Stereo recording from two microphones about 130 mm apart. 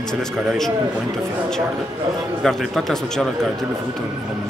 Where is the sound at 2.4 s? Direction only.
Centre (ahead or behind).